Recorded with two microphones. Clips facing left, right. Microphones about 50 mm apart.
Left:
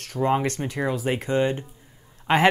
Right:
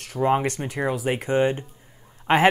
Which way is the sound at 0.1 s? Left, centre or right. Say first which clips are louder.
Right 1 dB; centre.